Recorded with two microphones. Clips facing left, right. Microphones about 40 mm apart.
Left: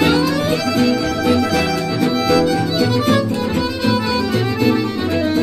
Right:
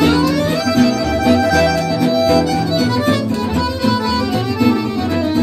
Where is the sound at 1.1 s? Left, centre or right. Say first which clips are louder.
Right 3 dB; centre.